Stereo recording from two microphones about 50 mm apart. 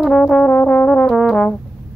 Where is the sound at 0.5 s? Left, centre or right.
Left.